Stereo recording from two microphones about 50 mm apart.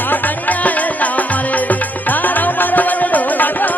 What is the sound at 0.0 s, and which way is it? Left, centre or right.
Music, left.